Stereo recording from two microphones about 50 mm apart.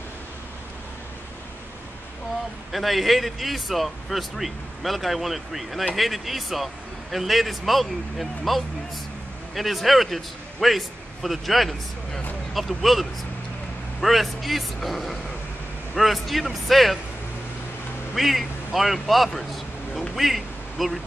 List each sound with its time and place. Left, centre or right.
2.7 s speech: centre
18.1 s speech: centre